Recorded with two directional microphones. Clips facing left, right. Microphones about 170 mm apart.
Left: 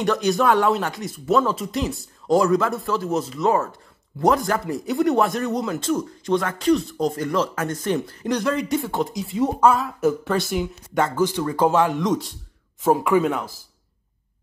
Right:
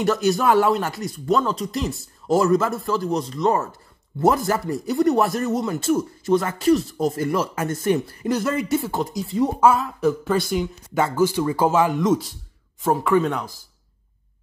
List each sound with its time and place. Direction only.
0.0 s speech: centre (ahead or behind)
12.9 s speech: 10° left (ahead or behind)